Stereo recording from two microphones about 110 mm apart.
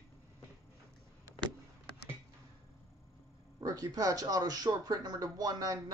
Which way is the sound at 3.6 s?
35° right (ahead or behind).